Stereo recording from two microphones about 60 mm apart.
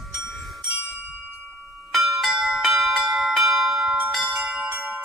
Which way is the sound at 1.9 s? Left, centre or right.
Centre.